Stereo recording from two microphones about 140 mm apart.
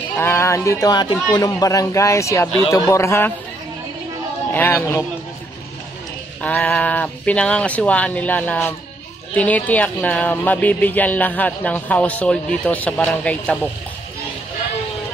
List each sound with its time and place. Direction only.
0.2 s a man's voice: 20° left (ahead or behind)
4.5 s speech: 15° left (ahead or behind)
6.4 s speech: 10° left (ahead or behind)